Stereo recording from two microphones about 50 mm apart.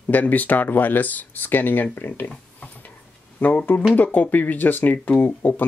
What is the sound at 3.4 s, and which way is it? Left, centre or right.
Speech, left.